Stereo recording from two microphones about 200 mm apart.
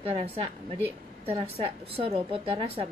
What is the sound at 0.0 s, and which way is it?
A woman's voice, 30° right (ahead or behind).